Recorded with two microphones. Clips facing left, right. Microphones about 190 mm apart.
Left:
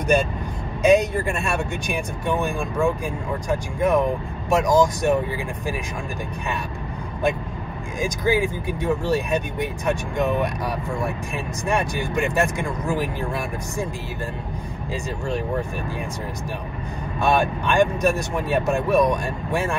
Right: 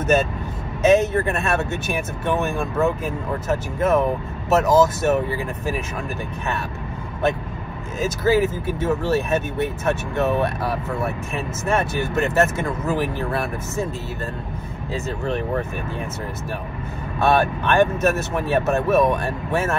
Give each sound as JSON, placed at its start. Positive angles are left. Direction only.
{"t": 0.8, "sound": "speech", "side_deg": 15}
{"t": 8.0, "sound": "speech", "side_deg": 15}
{"t": 15.2, "sound": "speech", "side_deg": 10}
{"t": 17.2, "sound": "speech", "side_deg": 15}